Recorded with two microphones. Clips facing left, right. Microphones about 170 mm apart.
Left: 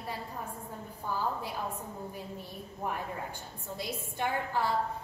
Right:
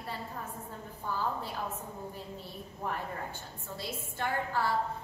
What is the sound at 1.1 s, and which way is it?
Speech, 15° left (ahead or behind).